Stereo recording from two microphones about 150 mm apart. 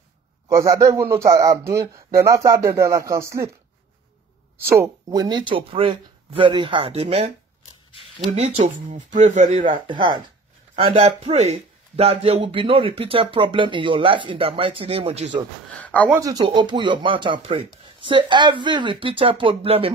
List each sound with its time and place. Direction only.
0.5 s speech: 20° right (ahead or behind)
4.6 s speech: 20° right (ahead or behind)
8.8 s speech: 55° right (ahead or behind)
9.8 s speech: 30° right (ahead or behind)
10.8 s speech: 40° right (ahead or behind)
15.8 s speech: 10° left (ahead or behind)
16.2 s speech: 20° right (ahead or behind); by 19.9 s 40° right (ahead or behind)